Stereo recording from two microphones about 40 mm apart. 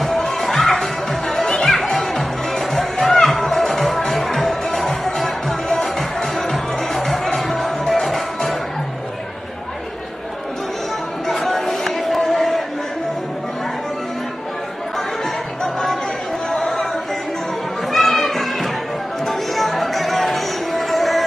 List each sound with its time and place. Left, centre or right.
0.0 s music: centre
11.2 s a sound: centre
15.0 s music: centre
17.9 s music: centre